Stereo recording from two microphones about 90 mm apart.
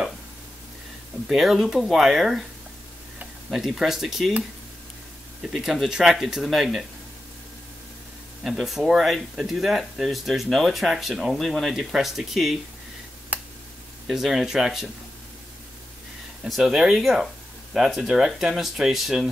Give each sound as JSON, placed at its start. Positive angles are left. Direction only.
{"t": 1.3, "sound": "speech", "side_deg": -5}
{"t": 3.4, "sound": "speech", "side_deg": 0}
{"t": 5.4, "sound": "speech", "side_deg": -5}
{"t": 8.5, "sound": "speech", "side_deg": 0}
{"t": 13.3, "sound": "a sound", "side_deg": -15}
{"t": 14.0, "sound": "speech", "side_deg": -5}
{"t": 16.4, "sound": "speech", "side_deg": -5}